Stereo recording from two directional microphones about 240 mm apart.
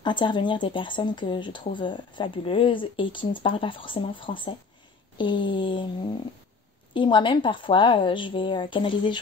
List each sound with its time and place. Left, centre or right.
0.0 s speech: centre
6.9 s speech: centre